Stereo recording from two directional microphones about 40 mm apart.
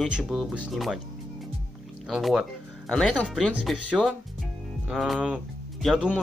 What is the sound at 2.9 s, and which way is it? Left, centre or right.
Speech, centre.